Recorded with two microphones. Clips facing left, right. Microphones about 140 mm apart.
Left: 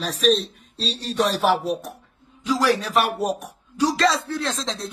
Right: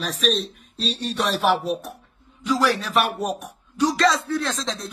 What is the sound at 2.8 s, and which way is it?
Speech, 35° left (ahead or behind).